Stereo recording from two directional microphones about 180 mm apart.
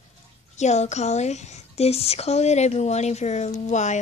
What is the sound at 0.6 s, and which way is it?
A woman's voice, 40° left (ahead or behind).